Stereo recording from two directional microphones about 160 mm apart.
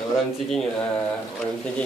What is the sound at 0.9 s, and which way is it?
Speech, 5° left (ahead or behind).